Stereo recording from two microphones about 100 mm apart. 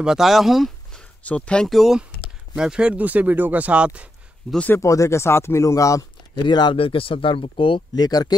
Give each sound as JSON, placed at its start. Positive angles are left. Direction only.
{"t": 0.0, "sound": "speech", "side_deg": -5}
{"t": 1.2, "sound": "speech", "side_deg": 10}
{"t": 4.6, "sound": "speech", "side_deg": 30}
{"t": 6.4, "sound": "speech", "side_deg": 50}
{"t": 6.8, "sound": "speech", "side_deg": 65}
{"t": 7.9, "sound": "speech", "side_deg": 40}